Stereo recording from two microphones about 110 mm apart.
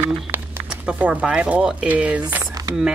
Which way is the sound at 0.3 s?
20° right (ahead or behind).